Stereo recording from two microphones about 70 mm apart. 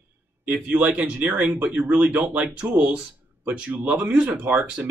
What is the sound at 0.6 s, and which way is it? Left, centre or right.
Speech, right.